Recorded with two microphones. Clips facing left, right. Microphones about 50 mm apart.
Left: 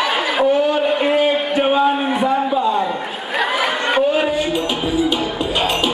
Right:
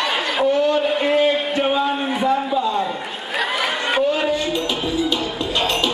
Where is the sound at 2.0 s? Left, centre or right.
Centre.